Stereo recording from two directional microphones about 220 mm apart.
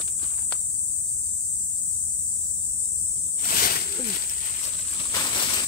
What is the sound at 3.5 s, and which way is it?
Snake, 40° left (ahead or behind).